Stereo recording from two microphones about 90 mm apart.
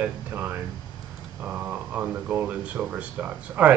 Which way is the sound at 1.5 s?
15° right (ahead or behind).